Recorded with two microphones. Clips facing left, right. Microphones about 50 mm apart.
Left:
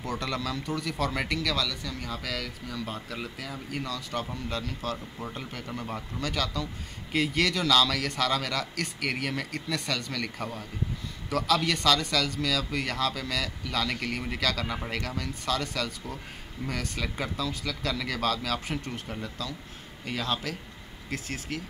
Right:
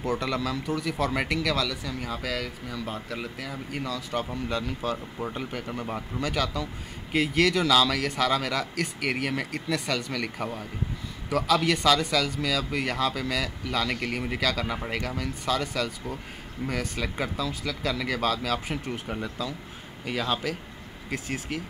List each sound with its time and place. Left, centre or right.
0.0 s speech: centre